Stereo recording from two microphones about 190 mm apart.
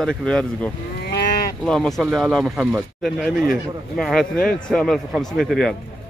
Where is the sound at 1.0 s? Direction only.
60° left (ahead or behind).